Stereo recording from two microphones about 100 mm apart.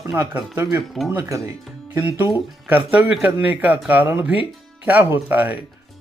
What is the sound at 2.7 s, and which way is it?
Speech, 15° right (ahead or behind).